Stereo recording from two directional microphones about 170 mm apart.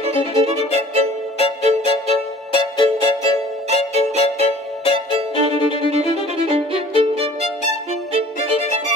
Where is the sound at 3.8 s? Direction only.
35° left (ahead or behind).